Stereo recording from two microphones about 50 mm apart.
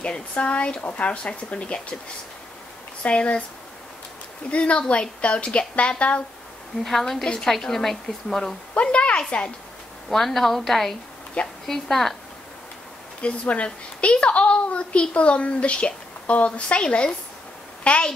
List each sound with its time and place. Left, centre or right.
0.0 s a child's voice: left
3.0 s a child's voice: left
4.5 s a child's voice: left
6.8 s a woman's voice: centre
8.8 s a child's voice: left
10.0 s a woman's voice: centre
13.2 s a child's voice: left